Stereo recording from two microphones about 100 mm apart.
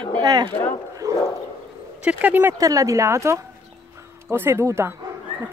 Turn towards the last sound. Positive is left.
turn(degrees=-25)  # may be behind; listen again after turning